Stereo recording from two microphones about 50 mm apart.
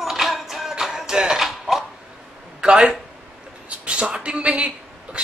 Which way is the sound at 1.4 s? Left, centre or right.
Centre.